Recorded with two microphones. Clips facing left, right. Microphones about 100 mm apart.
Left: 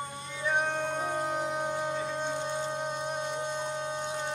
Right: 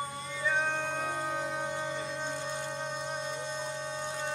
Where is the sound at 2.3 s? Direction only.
20° left (ahead or behind).